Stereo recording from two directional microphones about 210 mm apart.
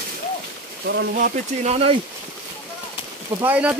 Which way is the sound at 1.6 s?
30° right (ahead or behind).